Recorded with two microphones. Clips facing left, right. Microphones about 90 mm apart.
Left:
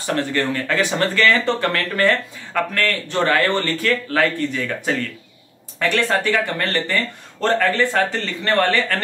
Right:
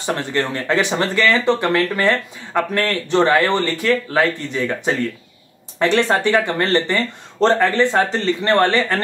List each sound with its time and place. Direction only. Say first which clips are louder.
0.0 s speech: even; 20° right (ahead or behind)